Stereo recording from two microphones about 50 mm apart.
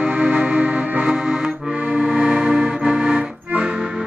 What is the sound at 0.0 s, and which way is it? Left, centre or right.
Music, centre.